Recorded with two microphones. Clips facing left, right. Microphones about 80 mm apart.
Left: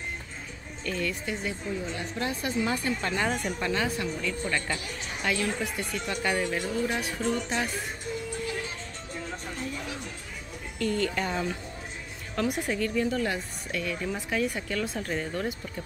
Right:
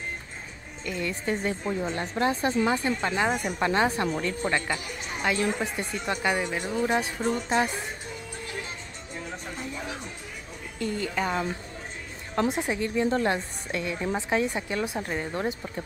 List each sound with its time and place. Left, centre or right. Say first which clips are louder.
0.8 s a woman's voice: even; centre
1.2 s a woman's voice: right 5 dB; right
2.1 s speech: right 5 dB; right; by 3.5 s centre
3.5 s speech: right 5 dB; right
4.6 s speech: right 2 dB; centre
10.8 s speech: left 1 dB; centre
13.1 s speech: right 4 dB; right
13.7 s speech: right 3 dB; right